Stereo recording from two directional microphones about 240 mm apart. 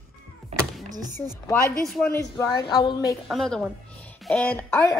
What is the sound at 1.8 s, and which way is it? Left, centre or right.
Speech, centre.